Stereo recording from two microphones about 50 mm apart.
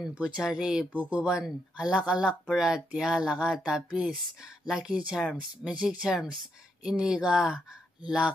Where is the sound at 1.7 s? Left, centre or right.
Centre.